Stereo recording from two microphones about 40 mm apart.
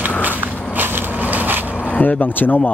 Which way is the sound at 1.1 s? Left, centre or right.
Right.